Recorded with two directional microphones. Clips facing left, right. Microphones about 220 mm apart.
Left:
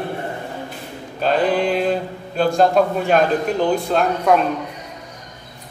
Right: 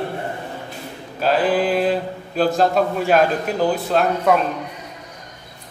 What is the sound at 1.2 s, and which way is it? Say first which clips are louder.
A man's voice: even; 5° right (ahead or behind).